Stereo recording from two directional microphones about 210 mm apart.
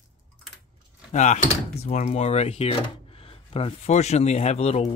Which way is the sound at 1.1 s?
35° left (ahead or behind).